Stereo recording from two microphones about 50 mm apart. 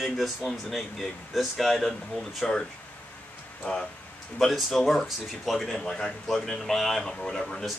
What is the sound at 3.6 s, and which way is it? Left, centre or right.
Speech, centre.